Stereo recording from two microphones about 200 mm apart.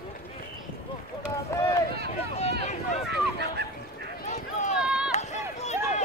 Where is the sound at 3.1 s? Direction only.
55° right (ahead or behind).